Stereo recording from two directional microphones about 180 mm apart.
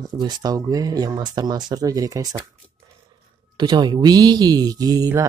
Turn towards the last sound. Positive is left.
turn(degrees=-20)  # may be behind; listen again after turning